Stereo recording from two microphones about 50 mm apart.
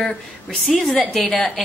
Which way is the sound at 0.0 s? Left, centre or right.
Centre.